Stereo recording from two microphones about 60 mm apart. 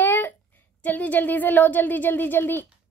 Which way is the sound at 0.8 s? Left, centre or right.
Left.